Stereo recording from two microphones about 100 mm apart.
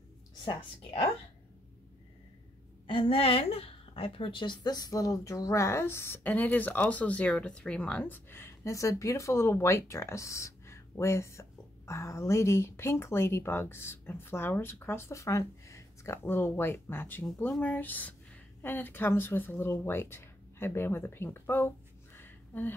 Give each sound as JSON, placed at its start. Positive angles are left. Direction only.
{"t": 2.9, "sound": "a woman's voice", "side_deg": 65}
{"t": 4.7, "sound": "speech", "side_deg": 35}
{"t": 8.0, "sound": "speech", "side_deg": 20}